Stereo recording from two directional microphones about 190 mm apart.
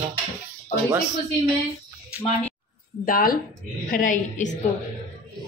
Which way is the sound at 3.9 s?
45° left (ahead or behind).